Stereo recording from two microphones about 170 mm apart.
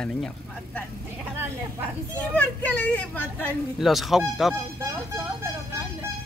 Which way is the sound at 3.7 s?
Centre (ahead or behind).